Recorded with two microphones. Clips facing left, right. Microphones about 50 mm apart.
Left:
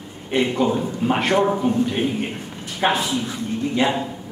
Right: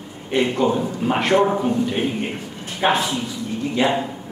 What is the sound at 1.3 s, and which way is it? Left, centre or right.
Speech, centre.